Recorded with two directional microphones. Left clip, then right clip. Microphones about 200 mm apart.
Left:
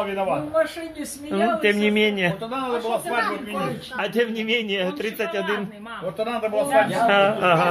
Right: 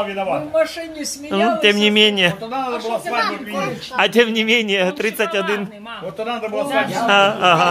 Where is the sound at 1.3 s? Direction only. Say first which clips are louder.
Right 5 dB; 25° right (ahead or behind).